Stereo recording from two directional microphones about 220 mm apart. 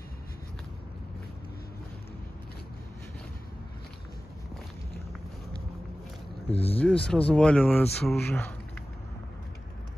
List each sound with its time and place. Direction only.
6.5 s speech: 25° left (ahead or behind)
6.8 s speech: 5° left (ahead or behind)